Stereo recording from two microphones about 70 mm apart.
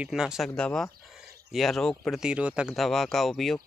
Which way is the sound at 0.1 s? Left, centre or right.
Centre.